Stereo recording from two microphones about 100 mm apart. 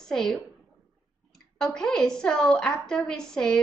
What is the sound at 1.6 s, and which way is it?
A woman's voice, 5° left (ahead or behind).